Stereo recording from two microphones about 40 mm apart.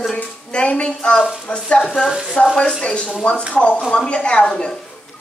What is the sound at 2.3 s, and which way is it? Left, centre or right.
Sizzle, centre.